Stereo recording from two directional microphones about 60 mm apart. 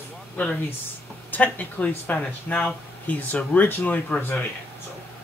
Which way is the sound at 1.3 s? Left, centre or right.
Left.